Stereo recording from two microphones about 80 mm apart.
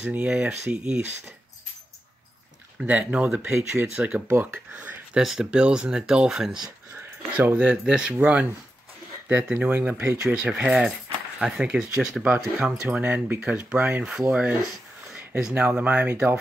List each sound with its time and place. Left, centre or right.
0.0 s speech: centre
2.8 s speech: centre
5.2 s speech: centre
12.8 s speech: right
15.1 s a sound: centre
15.5 s speech: centre